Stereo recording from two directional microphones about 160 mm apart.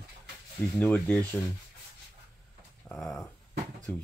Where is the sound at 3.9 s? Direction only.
10° left (ahead or behind).